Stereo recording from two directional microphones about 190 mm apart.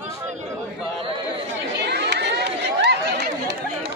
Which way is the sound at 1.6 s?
65° right (ahead or behind).